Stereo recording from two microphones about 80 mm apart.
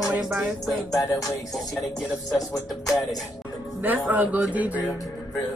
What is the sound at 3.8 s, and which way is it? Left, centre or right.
A man's voice, right.